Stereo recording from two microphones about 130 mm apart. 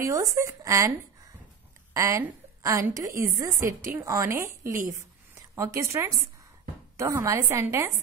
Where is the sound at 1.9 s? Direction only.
25° right (ahead or behind).